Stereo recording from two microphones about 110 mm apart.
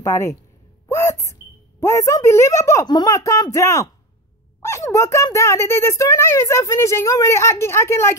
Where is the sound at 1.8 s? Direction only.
25° left (ahead or behind).